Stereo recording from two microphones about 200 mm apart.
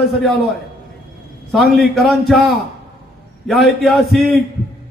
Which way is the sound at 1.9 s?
Centre (ahead or behind).